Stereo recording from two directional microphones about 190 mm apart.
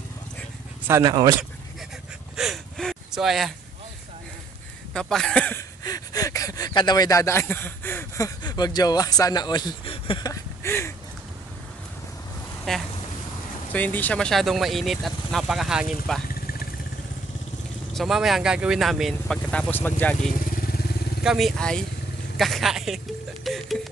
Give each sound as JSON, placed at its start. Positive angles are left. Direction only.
{"t": 0.8, "sound": "speech", "side_deg": -20}
{"t": 2.3, "sound": "a sound", "side_deg": 0}
{"t": 4.9, "sound": "speech", "side_deg": 5}
{"t": 5.9, "sound": "a sound", "side_deg": 20}
{"t": 12.7, "sound": "speech", "side_deg": 0}
{"t": 17.9, "sound": "speech", "side_deg": 0}
{"t": 20.5, "sound": "vehicle", "side_deg": 50}
{"t": 21.2, "sound": "speech", "side_deg": 0}
{"t": 23.4, "sound": "music", "side_deg": 0}